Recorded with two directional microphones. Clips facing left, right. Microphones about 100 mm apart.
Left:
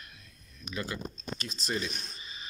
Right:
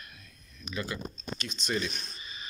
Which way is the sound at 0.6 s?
40° left (ahead or behind).